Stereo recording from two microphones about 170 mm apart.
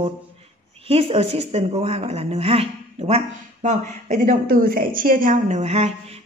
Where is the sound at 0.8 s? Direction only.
35° right (ahead or behind).